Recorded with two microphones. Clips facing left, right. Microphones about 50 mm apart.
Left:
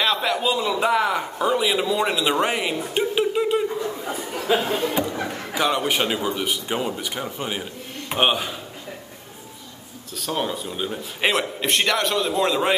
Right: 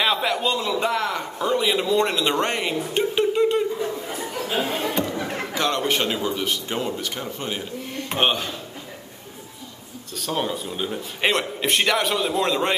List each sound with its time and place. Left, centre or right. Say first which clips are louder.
0.0 s a man's voice: even; centre
10.1 s a man's voice: even; centre